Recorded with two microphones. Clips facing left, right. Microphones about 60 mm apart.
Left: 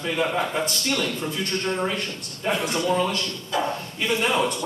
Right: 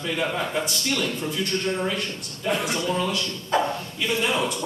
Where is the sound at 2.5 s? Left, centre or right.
Left.